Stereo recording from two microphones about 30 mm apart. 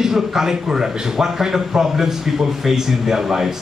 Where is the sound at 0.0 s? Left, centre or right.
Centre.